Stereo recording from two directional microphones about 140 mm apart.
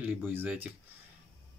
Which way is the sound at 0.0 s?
10° right (ahead or behind).